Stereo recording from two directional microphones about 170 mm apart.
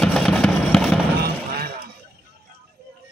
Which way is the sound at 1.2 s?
65° right (ahead or behind).